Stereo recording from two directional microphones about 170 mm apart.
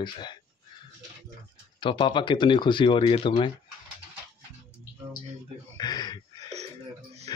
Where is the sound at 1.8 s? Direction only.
30° left (ahead or behind).